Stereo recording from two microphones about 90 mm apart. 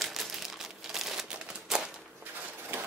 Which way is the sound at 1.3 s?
10° right (ahead or behind).